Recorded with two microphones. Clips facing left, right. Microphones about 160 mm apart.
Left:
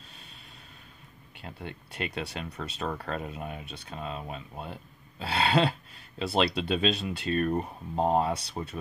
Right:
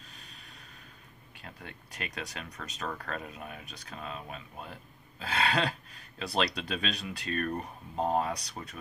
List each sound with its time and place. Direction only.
1.4 s speech: 25° left (ahead or behind)